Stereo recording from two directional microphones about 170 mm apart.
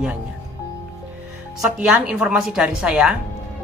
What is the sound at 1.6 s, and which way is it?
Speech, 5° right (ahead or behind).